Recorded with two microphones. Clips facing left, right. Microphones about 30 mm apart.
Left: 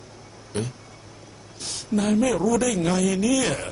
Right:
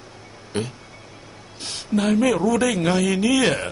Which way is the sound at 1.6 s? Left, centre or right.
Right.